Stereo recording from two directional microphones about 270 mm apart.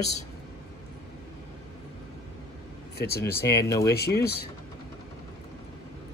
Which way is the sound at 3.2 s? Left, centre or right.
Centre.